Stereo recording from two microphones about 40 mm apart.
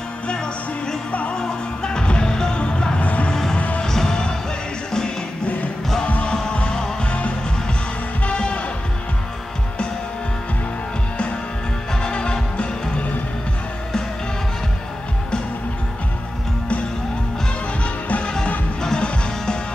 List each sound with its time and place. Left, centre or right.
1.3 s music: centre
3.0 s music: left
3.8 s music: centre
6.0 s music: left
6.5 s music: left
7.1 s music: left
12.0 s music: left
18.2 s music: left